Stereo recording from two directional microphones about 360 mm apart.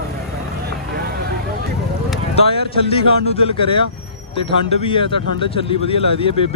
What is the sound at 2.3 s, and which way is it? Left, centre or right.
Speech, centre.